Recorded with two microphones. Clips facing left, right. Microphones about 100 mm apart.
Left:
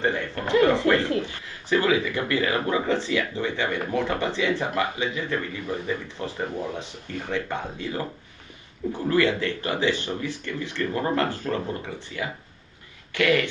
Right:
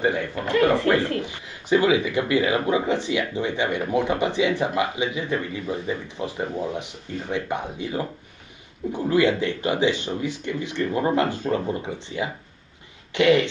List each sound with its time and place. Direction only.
0.0 s speech: 15° right (ahead or behind)